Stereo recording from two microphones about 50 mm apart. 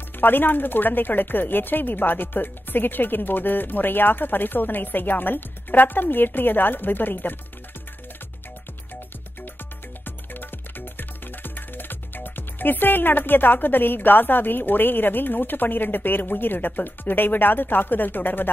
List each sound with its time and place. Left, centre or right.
0.2 s speech: left
10.0 s music: left
11.0 s speech: left